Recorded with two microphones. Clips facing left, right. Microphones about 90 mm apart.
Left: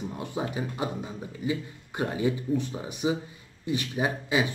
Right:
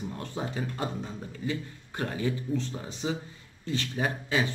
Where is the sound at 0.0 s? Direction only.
15° left (ahead or behind).